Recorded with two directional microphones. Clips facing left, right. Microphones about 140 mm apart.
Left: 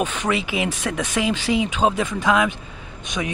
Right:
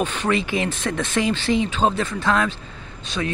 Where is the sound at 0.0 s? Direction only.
10° left (ahead or behind).